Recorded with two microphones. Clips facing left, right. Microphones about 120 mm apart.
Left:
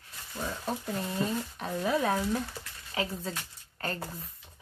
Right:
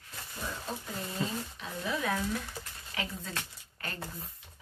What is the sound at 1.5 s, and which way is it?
Speech, 40° left (ahead or behind).